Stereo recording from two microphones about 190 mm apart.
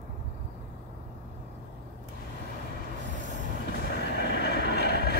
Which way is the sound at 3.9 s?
60° left (ahead or behind).